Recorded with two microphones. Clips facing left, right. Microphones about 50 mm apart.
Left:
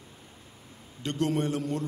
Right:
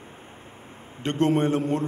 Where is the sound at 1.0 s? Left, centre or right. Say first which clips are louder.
Right 6 dB; right.